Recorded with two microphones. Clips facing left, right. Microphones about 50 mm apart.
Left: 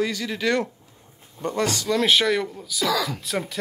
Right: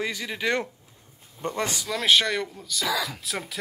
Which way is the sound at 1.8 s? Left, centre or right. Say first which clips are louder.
Left 1 dB; centre.